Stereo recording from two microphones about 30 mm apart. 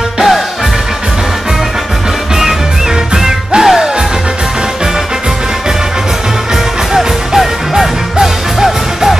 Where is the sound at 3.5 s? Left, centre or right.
Centre.